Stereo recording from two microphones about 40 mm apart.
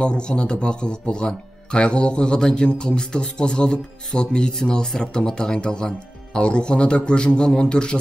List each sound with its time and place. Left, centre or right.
0.0 s speech: left